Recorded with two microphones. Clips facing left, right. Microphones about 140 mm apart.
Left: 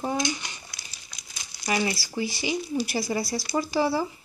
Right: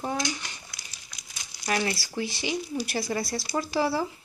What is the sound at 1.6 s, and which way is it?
Speech, 5° left (ahead or behind).